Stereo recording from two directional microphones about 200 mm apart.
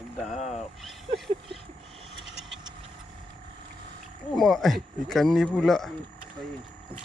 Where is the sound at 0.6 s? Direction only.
Centre (ahead or behind).